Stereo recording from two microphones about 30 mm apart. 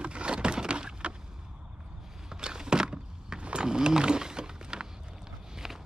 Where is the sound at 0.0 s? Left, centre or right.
Right.